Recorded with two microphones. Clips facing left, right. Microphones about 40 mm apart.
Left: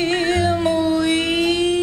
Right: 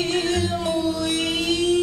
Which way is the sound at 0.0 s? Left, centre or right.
Left.